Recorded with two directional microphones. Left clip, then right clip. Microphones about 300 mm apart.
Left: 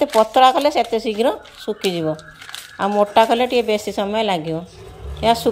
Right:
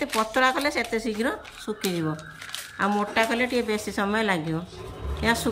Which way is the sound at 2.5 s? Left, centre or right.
Centre.